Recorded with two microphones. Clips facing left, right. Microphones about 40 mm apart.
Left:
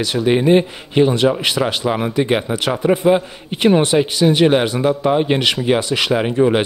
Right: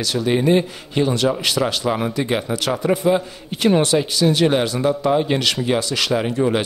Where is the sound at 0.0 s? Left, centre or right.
Left.